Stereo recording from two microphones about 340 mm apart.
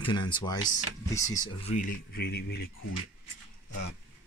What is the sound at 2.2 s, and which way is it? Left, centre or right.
Speech, left.